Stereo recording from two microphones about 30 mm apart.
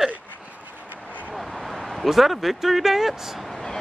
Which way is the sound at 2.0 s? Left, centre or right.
Centre.